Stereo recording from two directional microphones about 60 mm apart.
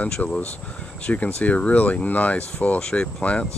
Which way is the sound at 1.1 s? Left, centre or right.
Left.